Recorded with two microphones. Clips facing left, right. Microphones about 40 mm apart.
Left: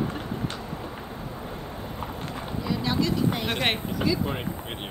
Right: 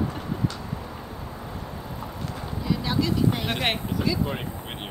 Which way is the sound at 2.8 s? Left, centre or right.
Centre.